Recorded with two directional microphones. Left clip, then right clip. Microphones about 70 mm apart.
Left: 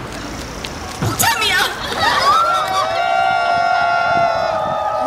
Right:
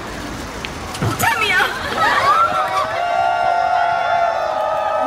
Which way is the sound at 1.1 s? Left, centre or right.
Centre.